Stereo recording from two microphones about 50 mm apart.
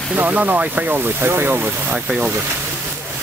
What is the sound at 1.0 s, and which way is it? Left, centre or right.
Speech, right.